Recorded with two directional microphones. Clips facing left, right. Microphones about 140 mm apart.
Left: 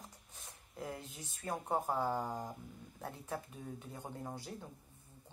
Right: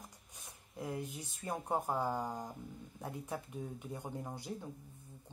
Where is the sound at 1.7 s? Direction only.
10° right (ahead or behind).